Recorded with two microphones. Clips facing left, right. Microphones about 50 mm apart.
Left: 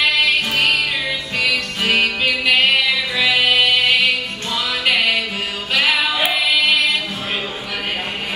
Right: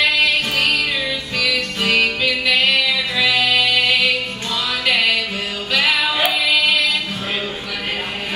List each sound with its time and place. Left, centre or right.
2.0 s music: left
5.7 s music: left
5.9 s music: centre